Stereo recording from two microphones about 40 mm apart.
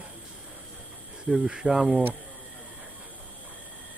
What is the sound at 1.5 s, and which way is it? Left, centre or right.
Speech, centre.